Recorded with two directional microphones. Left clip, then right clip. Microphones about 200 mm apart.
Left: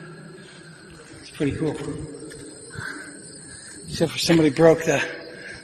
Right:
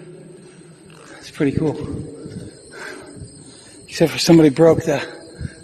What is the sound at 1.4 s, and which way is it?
Speech, 55° right (ahead or behind).